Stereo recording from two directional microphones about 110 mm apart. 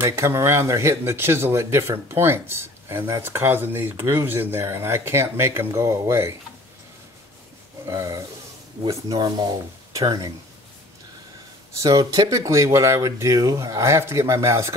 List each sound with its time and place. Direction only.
0.0 s speech: 25° right (ahead or behind)
7.8 s speech: 30° right (ahead or behind)
11.7 s speech: 30° right (ahead or behind)